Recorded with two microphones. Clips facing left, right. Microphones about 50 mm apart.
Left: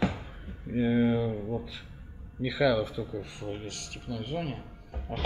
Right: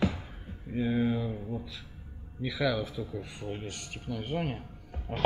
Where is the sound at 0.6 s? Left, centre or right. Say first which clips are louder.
Left 3 dB; centre.